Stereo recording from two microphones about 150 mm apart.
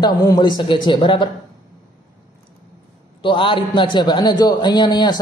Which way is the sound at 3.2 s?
35° left (ahead or behind).